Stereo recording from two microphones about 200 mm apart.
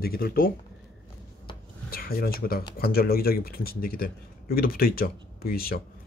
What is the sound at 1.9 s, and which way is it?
Speech, 45° left (ahead or behind).